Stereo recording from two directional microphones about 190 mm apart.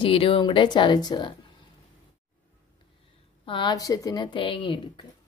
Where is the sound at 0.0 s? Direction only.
30° left (ahead or behind).